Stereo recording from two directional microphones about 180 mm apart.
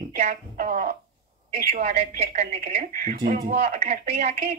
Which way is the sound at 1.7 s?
35° right (ahead or behind).